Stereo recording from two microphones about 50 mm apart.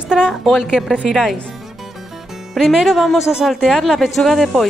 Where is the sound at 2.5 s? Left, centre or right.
Centre.